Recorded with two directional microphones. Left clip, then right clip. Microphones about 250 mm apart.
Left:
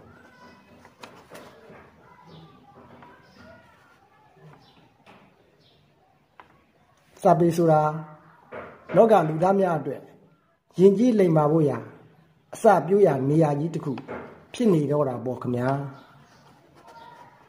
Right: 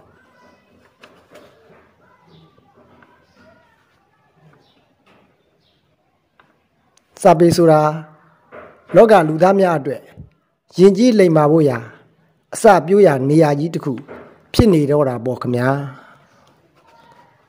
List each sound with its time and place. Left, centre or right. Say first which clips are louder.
7.2 s speech: right 9 dB; right